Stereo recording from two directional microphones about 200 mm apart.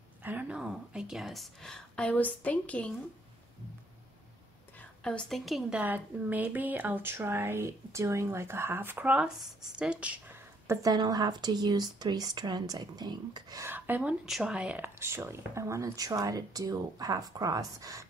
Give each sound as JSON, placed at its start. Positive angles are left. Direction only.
{"t": 0.2, "sound": "a woman's voice", "side_deg": -10}
{"t": 4.7, "sound": "a woman's voice", "side_deg": 5}